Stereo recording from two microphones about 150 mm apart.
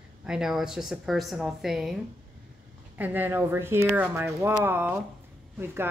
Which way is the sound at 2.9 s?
10° right (ahead or behind).